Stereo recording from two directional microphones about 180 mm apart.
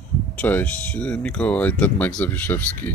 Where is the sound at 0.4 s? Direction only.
10° left (ahead or behind).